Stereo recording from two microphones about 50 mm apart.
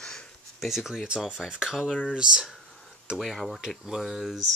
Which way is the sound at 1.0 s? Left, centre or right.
Centre.